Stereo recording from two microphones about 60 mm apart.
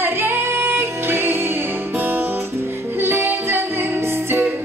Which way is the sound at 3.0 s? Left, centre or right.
Right.